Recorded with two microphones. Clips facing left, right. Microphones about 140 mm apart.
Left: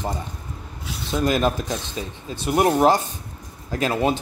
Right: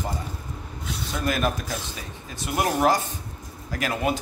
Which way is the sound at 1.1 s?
25° left (ahead or behind).